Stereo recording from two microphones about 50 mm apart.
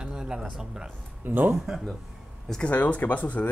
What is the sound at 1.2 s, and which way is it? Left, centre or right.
Speech, right.